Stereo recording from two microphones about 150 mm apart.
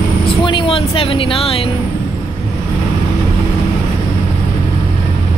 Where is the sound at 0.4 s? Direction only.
30° left (ahead or behind).